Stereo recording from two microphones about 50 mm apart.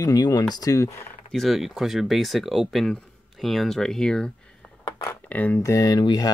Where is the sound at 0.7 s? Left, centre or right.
Left.